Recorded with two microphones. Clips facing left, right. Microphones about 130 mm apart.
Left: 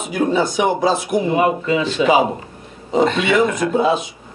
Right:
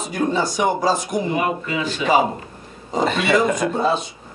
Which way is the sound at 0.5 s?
5° left (ahead or behind).